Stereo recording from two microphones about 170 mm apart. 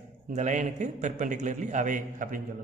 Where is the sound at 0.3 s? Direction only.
45° right (ahead or behind).